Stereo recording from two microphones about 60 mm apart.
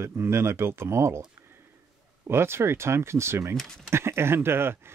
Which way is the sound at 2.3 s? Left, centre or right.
Right.